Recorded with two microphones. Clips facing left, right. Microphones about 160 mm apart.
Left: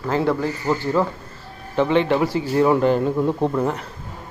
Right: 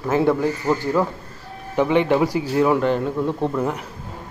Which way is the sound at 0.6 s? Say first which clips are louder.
Even; 5° right (ahead or behind).